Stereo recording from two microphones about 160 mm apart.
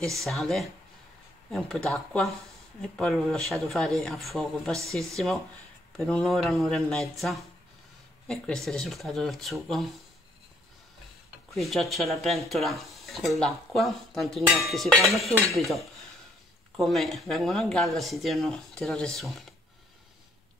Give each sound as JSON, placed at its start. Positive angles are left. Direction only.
{"t": 0.2, "sound": "speech", "side_deg": 0}
{"t": 11.5, "sound": "speech", "side_deg": 0}